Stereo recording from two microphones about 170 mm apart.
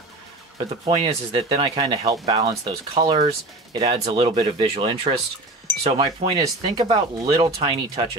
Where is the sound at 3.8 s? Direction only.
35° right (ahead or behind).